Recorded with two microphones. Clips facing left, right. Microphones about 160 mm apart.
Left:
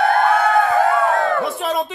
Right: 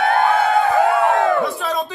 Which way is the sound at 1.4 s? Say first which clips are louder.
Left 1 dB; 25° left (ahead or behind).